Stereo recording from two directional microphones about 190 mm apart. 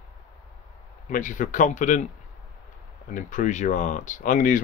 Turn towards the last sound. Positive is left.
turn(degrees=45)  # may be behind; listen again after turning